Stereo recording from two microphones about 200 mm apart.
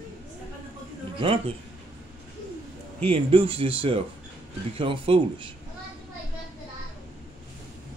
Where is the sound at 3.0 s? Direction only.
30° right (ahead or behind).